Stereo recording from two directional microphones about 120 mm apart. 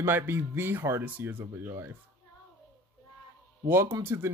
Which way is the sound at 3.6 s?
20° right (ahead or behind).